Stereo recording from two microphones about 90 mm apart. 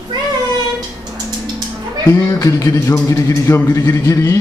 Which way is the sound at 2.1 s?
40° left (ahead or behind).